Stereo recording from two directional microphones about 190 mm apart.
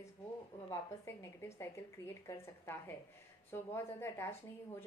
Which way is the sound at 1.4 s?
15° left (ahead or behind).